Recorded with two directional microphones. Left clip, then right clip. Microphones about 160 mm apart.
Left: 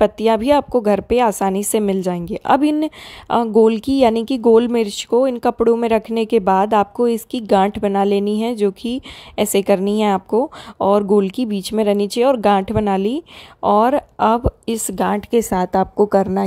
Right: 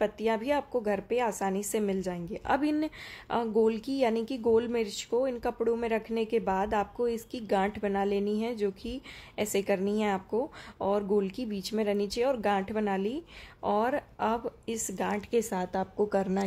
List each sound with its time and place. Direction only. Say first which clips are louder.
0.0 s a woman's voice: left 14 dB; 55° left (ahead or behind); by 16.3 s 40° left (ahead or behind)